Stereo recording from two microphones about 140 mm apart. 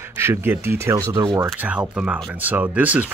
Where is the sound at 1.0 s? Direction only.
30° right (ahead or behind).